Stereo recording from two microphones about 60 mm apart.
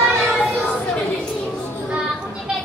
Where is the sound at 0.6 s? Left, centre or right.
Left.